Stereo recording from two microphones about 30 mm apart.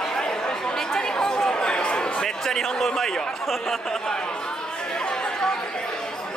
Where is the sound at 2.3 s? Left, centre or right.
Centre.